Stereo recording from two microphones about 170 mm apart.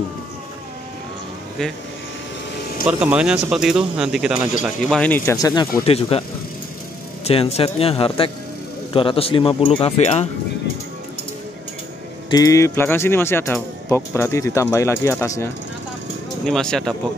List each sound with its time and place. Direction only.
1.6 s speech: centre (ahead or behind)
2.9 s speech: 5° right (ahead or behind); by 5.7 s 25° left (ahead or behind)
5.9 s speech: 35° left (ahead or behind)
7.2 s speech: 35° left (ahead or behind)
12.3 s speech: 20° left (ahead or behind)
16.4 s speech: 5° left (ahead or behind)